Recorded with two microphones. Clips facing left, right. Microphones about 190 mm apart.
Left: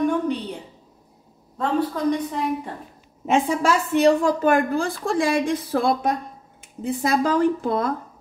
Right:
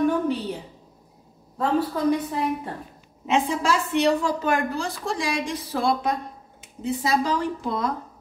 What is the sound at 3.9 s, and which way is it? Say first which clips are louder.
A woman's voice: left 6 dB; 50° left (ahead or behind).